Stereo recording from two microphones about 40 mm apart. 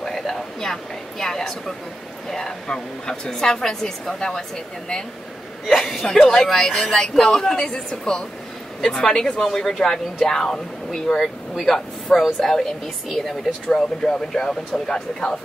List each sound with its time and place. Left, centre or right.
0.0 s a sound: centre
2.3 s speech: centre
11.1 s speech: centre
12.4 s speech: centre